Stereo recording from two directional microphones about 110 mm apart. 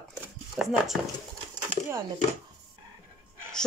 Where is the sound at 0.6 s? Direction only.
5° right (ahead or behind).